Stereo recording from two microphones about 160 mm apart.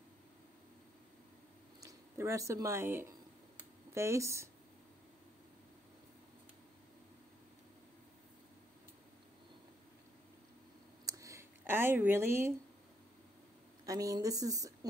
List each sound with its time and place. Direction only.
1.8 s speech: 20° right (ahead or behind)
11.1 s a sound: 20° right (ahead or behind)
13.8 s a woman's voice: 20° right (ahead or behind)